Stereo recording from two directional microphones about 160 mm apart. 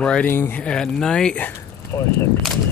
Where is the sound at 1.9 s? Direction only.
20° left (ahead or behind).